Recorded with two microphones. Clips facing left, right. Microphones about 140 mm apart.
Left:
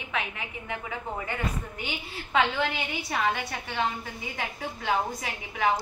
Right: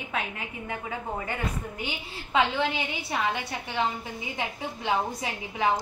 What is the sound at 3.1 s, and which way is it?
A woman's voice, 20° right (ahead or behind).